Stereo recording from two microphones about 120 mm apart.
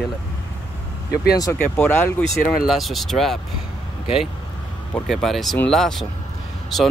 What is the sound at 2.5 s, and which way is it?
Speech, centre (ahead or behind).